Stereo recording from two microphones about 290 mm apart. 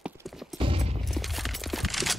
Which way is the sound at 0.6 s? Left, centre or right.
Centre.